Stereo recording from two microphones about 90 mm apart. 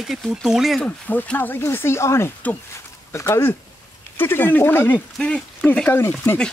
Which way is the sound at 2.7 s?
35° left (ahead or behind).